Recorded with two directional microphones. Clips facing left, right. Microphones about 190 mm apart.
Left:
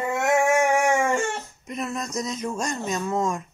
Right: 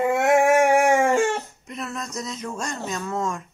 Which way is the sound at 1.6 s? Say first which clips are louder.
Left 2 dB; 20° left (ahead or behind).